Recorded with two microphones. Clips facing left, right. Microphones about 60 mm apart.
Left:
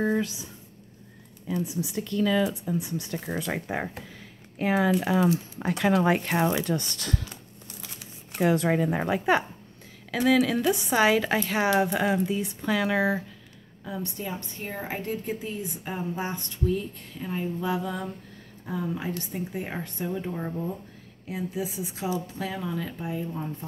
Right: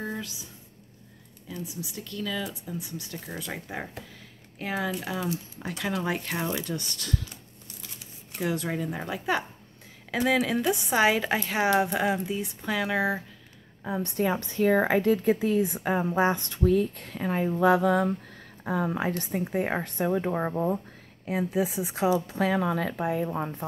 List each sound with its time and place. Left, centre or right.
0.0 s speech: left
1.5 s speech: left
8.4 s speech: left
9.0 s speech: left
10.1 s a woman's voice: centre
14.0 s a woman's voice: right